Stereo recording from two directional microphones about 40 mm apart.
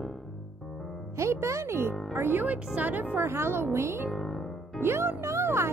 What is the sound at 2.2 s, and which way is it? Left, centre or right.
Speech, right.